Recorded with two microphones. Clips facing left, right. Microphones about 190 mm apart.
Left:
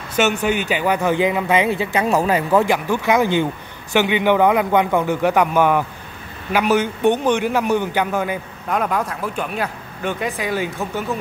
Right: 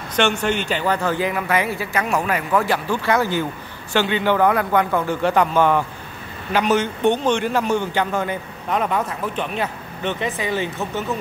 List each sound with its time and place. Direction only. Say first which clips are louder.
0.1 s speech: left 2 dB; 5° left (ahead or behind); by 2.7 s 25° left (ahead or behind)
2.7 s a man's voice: left 2 dB; 15° left (ahead or behind)